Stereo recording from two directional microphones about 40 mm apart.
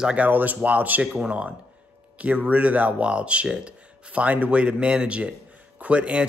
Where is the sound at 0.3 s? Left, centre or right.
Right.